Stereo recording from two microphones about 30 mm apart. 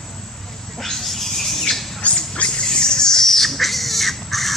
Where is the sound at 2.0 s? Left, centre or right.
Left.